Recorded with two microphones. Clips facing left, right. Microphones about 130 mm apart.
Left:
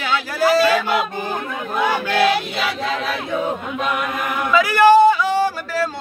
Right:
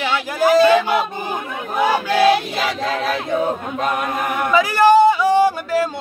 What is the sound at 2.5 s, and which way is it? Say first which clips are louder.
Choir: right 1 dB; 40° right (ahead or behind).